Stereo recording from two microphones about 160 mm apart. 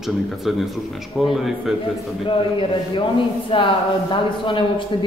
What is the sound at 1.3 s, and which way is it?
Speech, centre (ahead or behind).